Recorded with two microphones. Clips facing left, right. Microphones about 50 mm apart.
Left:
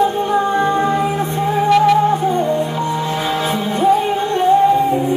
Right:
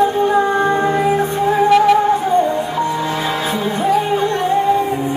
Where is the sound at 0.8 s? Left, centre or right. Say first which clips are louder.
Even; right.